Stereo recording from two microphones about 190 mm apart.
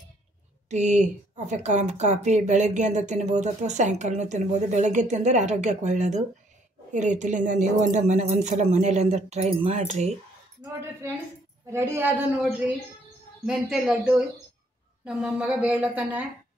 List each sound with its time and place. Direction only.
0.7 s speech: 35° right (ahead or behind)
10.6 s a woman's voice: 15° right (ahead or behind)